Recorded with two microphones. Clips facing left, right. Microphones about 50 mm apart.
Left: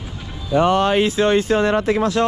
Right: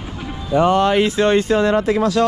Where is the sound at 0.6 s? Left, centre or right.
Left.